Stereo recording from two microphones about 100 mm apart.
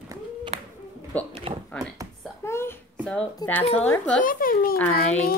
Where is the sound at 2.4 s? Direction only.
25° left (ahead or behind).